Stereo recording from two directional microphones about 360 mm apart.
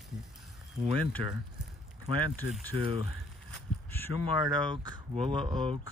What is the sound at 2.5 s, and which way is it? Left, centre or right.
Speech, centre.